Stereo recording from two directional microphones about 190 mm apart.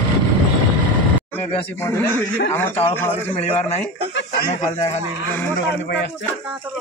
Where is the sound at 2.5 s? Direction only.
10° left (ahead or behind).